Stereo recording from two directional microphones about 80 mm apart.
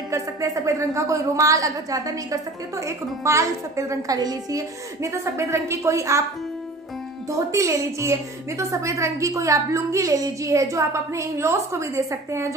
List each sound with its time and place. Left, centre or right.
0.1 s a woman's voice: right
4.2 s a woman's voice: right
7.2 s a woman's voice: right